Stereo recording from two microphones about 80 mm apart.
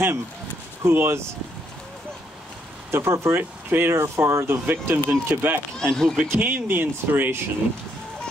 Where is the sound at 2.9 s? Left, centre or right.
Right.